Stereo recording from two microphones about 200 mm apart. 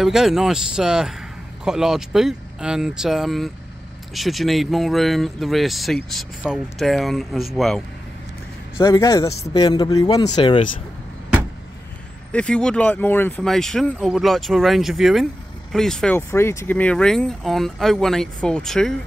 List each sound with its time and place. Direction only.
0.0 s speech: centre (ahead or behind)
8.7 s speech: 15° left (ahead or behind)
12.3 s speech: 5° left (ahead or behind)